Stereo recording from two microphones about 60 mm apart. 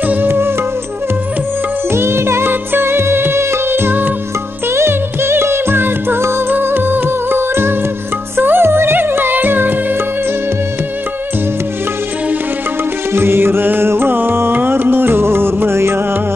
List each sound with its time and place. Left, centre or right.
0.0 s music: right
1.9 s music: right
13.1 s music: right